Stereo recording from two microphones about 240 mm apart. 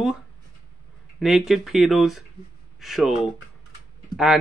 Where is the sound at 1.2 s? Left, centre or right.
Centre.